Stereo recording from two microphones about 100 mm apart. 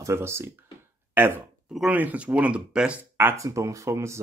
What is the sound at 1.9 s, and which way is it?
Speech, 15° right (ahead or behind).